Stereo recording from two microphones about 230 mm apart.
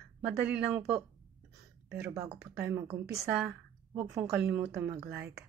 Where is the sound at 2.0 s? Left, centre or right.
Centre.